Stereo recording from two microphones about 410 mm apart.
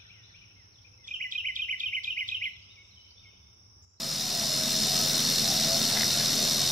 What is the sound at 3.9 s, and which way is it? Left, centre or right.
Vehicle, centre.